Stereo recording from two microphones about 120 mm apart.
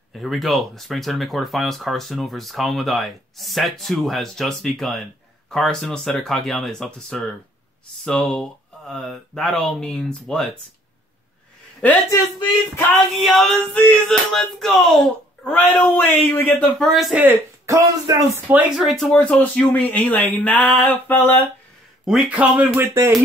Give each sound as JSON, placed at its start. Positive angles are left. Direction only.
{"t": 0.1, "sound": "speech", "side_deg": 0}
{"t": 11.8, "sound": "speech", "side_deg": 15}
{"t": 13.2, "sound": "speech", "side_deg": 0}
{"t": 15.4, "sound": "speech", "side_deg": 15}
{"t": 17.2, "sound": "speech", "side_deg": -20}
{"t": 18.8, "sound": "speech", "side_deg": 0}
{"t": 22.0, "sound": "speech", "side_deg": -10}